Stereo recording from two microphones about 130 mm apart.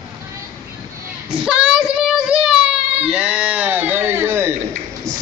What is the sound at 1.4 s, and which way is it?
Child singing, 5° right (ahead or behind).